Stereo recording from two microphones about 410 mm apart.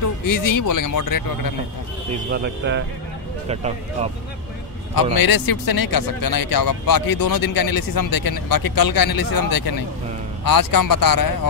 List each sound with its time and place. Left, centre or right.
0.2 s speech: left
2.1 s speech: right
5.1 s speech: left